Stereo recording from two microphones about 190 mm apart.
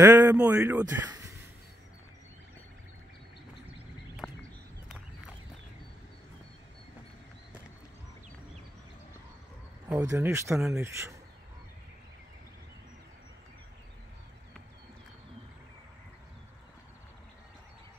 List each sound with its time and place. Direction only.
0.0 s a man's voice: 15° right (ahead or behind)
4.2 s a sound: centre (ahead or behind)
10.0 s speech: 15° right (ahead or behind)